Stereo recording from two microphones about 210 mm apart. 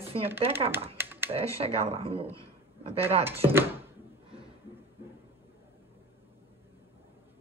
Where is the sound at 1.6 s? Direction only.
30° right (ahead or behind).